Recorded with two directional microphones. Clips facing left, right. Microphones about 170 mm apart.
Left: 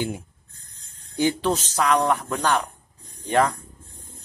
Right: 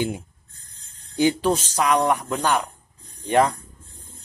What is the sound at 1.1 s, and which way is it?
Speech, 10° right (ahead or behind).